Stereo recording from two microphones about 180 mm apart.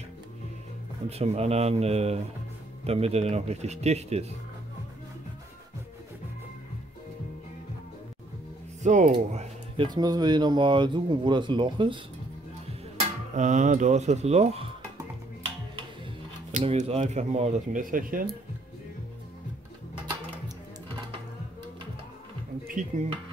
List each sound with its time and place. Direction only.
1.0 s speech: 35° right (ahead or behind)
8.8 s speech: 45° right (ahead or behind)
9.3 s a sound: 40° right (ahead or behind)
9.8 s speech: 20° right (ahead or behind)
13.3 s speech: 40° right (ahead or behind)
16.5 s speech: 35° right (ahead or behind)
22.7 s speech: 45° right (ahead or behind)